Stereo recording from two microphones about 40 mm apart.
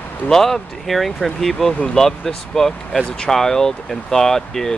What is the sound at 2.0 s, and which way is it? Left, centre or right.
Speech, left.